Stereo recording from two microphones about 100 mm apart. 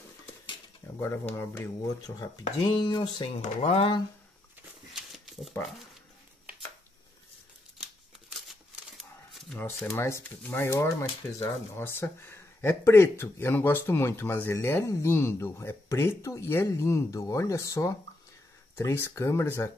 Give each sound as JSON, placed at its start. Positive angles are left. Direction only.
{"t": 0.9, "sound": "speech", "side_deg": 25}
{"t": 3.6, "sound": "speech", "side_deg": 90}
{"t": 4.9, "sound": "a sound", "side_deg": -5}
{"t": 8.3, "sound": "a sound", "side_deg": 0}
{"t": 9.3, "sound": "shuffling cards", "side_deg": 0}
{"t": 10.5, "sound": "speech", "side_deg": 25}